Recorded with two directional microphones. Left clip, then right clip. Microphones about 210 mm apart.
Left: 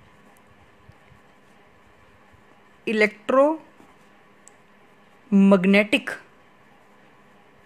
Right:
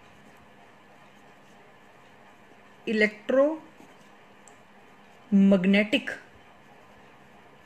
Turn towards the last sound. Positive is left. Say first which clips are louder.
# left 5 dB
turn(degrees=55)  # may be behind; listen again after turning